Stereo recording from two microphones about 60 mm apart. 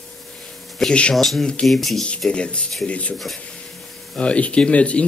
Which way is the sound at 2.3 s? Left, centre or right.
Centre.